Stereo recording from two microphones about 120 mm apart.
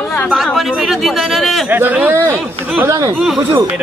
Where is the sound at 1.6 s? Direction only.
15° right (ahead or behind).